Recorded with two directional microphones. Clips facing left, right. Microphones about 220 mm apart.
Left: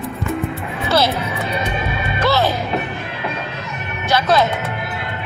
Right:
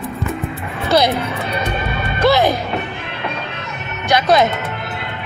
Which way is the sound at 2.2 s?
15° right (ahead or behind).